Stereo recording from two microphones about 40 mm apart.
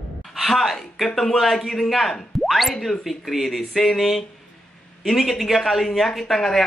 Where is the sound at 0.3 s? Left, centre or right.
Centre.